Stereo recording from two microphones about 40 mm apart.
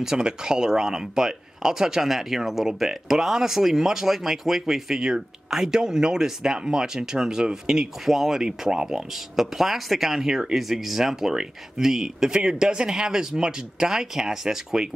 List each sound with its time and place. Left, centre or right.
0.0 s speech: centre